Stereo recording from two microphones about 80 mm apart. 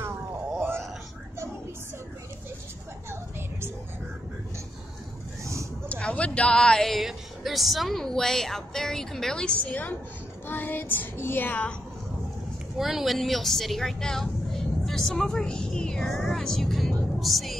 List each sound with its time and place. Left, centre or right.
0.6 s a sound: right
3.1 s a sound: right
5.4 s vehicle: right
5.9 s speech: centre
10.5 s child singing: left
12.7 s speech: centre